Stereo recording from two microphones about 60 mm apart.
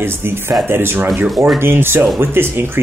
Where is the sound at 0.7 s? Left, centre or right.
Right.